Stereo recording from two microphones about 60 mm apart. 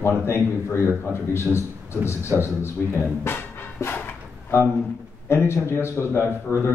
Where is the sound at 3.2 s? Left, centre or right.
Left.